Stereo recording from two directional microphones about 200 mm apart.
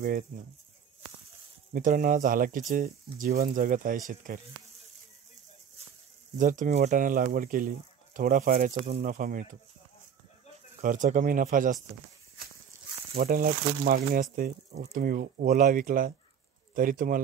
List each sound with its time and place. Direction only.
0.3 s speech: 40° right (ahead or behind)
1.7 s speech: 45° right (ahead or behind)
6.3 s speech: 40° right (ahead or behind)
10.8 s speech: 40° right (ahead or behind)
13.1 s speech: 45° right (ahead or behind)